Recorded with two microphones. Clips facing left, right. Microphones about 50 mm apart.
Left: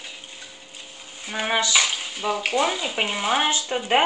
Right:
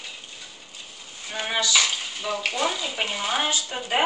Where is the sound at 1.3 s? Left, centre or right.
Left.